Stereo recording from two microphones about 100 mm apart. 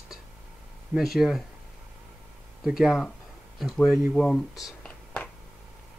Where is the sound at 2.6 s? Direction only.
5° right (ahead or behind).